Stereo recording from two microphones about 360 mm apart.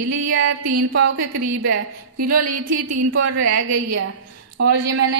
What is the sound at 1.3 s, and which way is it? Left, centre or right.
Speech, right.